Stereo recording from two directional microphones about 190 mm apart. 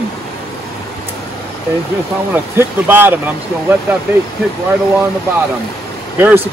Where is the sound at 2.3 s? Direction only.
10° right (ahead or behind).